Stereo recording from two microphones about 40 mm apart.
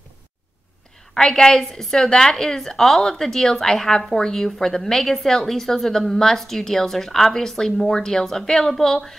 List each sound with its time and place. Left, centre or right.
1.1 s a woman's voice: centre